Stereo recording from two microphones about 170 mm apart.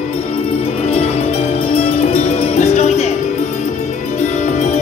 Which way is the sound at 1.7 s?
40° left (ahead or behind).